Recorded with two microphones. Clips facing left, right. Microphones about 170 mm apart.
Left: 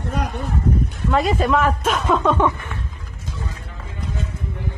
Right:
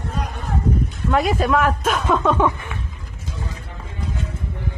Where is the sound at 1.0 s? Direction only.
5° right (ahead or behind).